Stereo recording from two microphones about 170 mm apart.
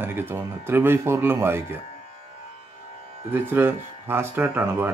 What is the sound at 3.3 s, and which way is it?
Speech, 10° right (ahead or behind).